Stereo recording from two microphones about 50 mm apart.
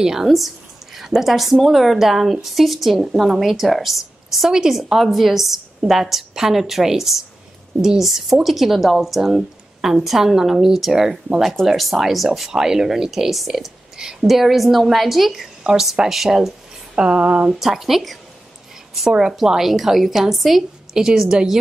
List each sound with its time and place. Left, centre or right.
0.0 s a woman's voice: centre
16.9 s a woman's voice: centre
17.5 s a woman's voice: centre